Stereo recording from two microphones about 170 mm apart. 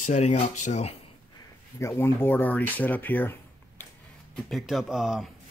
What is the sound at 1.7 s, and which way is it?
Speech, 15° left (ahead or behind).